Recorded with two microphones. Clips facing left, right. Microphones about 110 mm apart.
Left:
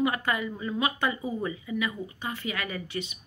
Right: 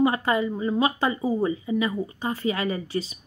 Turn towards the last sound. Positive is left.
turn(degrees=-35)  # may be behind; listen again after turning